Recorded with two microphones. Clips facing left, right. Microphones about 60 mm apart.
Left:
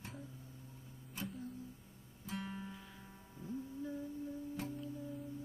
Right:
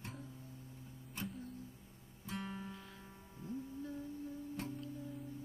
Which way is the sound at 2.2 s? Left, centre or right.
Centre.